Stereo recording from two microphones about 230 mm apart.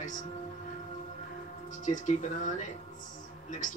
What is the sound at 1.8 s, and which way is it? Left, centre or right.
Speech, left.